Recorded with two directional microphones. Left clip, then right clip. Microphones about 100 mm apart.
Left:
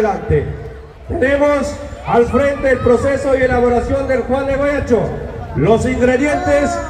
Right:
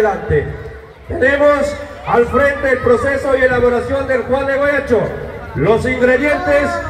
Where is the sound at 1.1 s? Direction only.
15° left (ahead or behind).